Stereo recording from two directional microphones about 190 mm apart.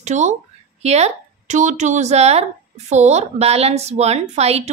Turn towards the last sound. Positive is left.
turn(degrees=-35)  # may be behind; listen again after turning